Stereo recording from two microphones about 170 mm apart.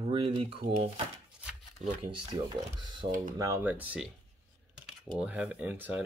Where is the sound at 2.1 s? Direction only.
25° right (ahead or behind).